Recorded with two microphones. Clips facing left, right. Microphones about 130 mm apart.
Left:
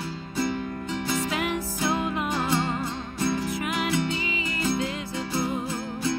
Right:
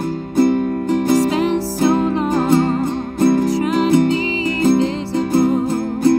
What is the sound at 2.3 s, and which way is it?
Music, 50° right (ahead or behind).